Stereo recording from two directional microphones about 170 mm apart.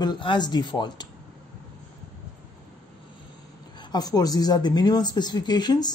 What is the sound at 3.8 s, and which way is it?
A woman's voice, 25° left (ahead or behind).